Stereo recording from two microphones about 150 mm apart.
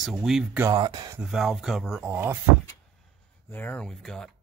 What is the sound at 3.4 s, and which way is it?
Speech, 15° left (ahead or behind).